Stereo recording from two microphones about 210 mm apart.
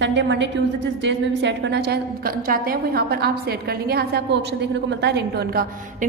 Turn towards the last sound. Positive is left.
turn(degrees=-50)  # may be behind; listen again after turning